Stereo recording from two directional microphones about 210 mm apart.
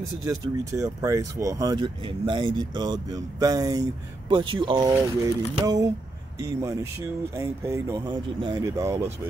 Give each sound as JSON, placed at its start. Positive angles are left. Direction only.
{"t": 0.2, "sound": "speech", "side_deg": -15}